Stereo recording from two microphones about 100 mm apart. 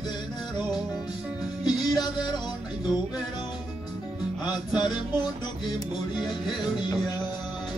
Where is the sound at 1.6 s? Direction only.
45° left (ahead or behind).